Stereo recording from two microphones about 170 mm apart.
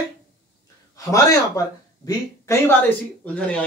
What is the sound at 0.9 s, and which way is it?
Speech, 20° left (ahead or behind).